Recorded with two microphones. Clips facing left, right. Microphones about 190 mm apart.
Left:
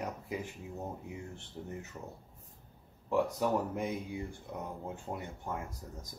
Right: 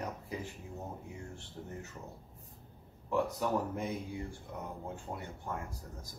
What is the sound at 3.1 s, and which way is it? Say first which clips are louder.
Speech: left 2 dB; 15° left (ahead or behind).